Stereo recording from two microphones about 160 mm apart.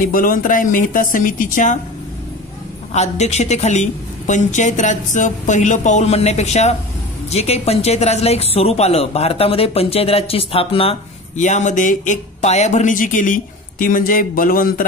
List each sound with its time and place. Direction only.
0.0 s a woman's voice: 60° left (ahead or behind)
2.9 s a woman's voice: 45° left (ahead or behind); by 14.9 s 60° left (ahead or behind)